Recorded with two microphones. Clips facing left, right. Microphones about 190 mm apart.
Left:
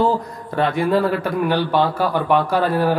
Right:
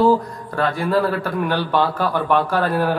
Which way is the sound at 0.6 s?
20° left (ahead or behind).